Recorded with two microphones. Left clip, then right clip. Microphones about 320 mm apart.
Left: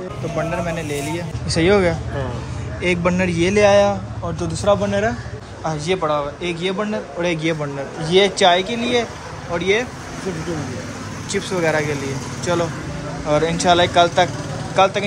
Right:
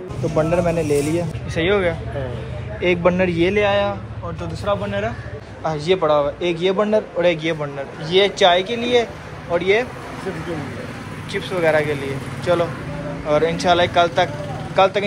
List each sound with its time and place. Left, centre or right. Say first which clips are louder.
0.4 s speech: right 5 dB; centre
1.5 s a man's voice: left 3 dB; centre
5.6 s a man's voice: right 2 dB; centre
11.3 s a man's voice: right 2 dB; centre